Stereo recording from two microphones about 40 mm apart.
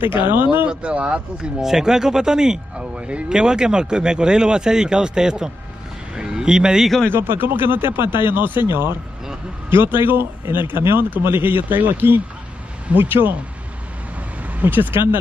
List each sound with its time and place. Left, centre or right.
0.0 s speech: right
0.7 s speech: right
1.6 s speech: centre
7.1 s speech: right
11.2 s speech: right
14.5 s speech: right